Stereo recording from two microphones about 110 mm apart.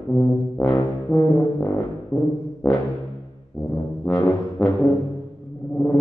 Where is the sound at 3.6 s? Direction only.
10° left (ahead or behind).